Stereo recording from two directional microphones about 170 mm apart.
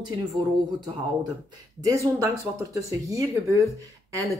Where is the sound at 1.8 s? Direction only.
20° right (ahead or behind).